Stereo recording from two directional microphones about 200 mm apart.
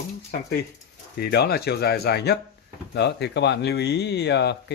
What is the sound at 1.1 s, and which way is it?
Speech, 50° left (ahead or behind).